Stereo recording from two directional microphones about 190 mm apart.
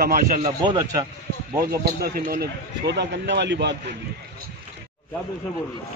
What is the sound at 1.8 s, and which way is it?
Speech, 55° right (ahead or behind).